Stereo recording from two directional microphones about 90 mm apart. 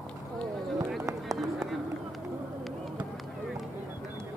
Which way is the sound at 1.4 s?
Centre (ahead or behind).